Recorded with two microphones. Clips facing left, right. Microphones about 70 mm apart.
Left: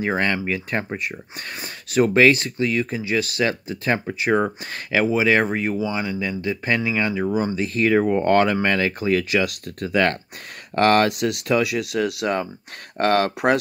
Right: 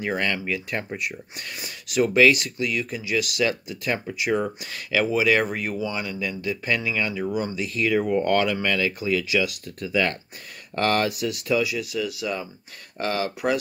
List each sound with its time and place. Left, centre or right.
0.0 s speech: left